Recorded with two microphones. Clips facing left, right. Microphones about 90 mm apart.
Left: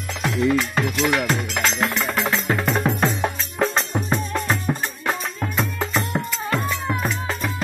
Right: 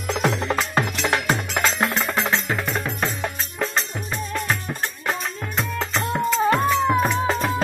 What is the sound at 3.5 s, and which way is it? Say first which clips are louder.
Music: left 5 dB; 40° left (ahead or behind).